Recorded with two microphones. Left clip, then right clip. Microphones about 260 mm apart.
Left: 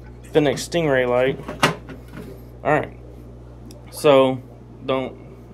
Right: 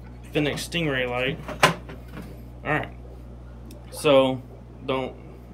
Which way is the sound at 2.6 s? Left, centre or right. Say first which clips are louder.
Left 7 dB; centre.